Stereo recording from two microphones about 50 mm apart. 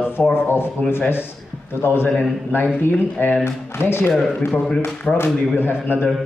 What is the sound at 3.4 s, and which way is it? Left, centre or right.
Speech, left.